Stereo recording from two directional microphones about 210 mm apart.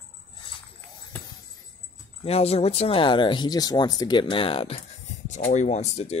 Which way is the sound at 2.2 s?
30° left (ahead or behind).